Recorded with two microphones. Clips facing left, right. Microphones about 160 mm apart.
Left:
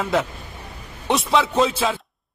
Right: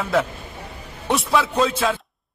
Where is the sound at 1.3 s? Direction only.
20° left (ahead or behind).